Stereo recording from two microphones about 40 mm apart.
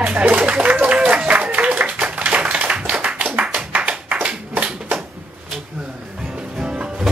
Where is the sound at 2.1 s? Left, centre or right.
Right.